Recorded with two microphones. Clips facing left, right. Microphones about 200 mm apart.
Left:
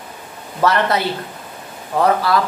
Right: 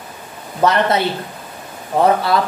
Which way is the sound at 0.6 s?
20° right (ahead or behind).